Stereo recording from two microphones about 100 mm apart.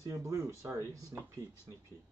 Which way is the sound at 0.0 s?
30° right (ahead or behind).